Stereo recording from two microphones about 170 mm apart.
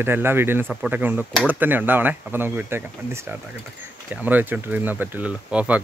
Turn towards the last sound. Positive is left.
turn(degrees=-5)  # may be behind; listen again after turning